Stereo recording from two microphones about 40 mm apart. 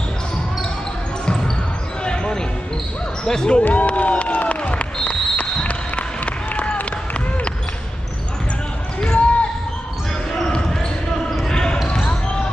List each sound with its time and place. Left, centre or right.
2.0 s basketball bounce: left
3.3 s speech: centre
3.6 s speech: left
4.1 s a sound: left
5.3 s applause: left
9.0 s basketball bounce: left
11.4 s basketball bounce: centre